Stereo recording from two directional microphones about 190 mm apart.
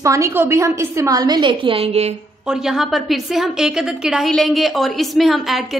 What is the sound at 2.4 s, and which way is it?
A woman's voice, 5° right (ahead or behind).